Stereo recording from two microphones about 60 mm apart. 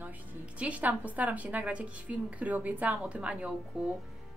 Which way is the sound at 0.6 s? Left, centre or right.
Right.